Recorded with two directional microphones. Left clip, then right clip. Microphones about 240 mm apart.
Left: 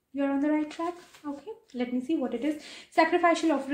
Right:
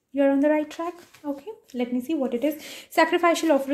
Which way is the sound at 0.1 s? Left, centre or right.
Right.